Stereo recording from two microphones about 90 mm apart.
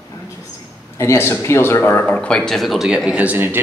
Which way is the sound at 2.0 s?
15° left (ahead or behind).